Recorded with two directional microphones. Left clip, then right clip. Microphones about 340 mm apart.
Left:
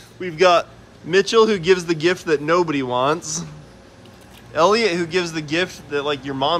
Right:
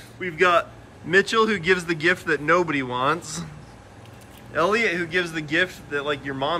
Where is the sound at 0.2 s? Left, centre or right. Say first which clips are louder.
Left 4 dB; centre.